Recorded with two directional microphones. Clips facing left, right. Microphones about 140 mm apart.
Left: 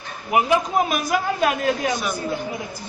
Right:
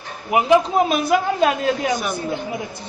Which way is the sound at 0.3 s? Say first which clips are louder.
Right 4 dB; 25° right (ahead or behind).